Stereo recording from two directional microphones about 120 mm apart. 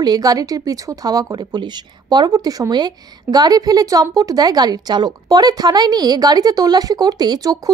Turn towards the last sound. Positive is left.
turn(degrees=-30)  # may be behind; listen again after turning